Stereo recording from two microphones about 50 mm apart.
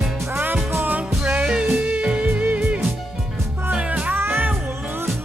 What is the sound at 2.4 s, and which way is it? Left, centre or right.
Music, right.